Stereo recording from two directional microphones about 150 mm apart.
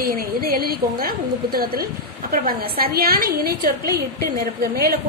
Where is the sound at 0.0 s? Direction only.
75° right (ahead or behind).